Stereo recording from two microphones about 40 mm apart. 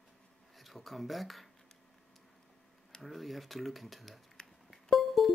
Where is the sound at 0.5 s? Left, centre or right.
Centre.